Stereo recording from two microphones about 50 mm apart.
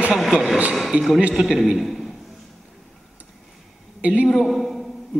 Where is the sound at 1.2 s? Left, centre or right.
Right.